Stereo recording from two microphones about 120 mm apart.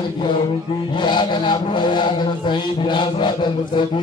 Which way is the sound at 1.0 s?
40° left (ahead or behind).